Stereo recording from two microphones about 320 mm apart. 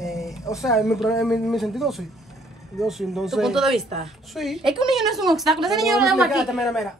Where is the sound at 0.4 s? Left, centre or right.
Centre.